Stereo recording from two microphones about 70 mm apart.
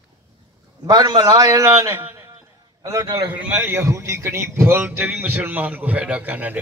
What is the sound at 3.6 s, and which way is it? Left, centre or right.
A man's voice, right.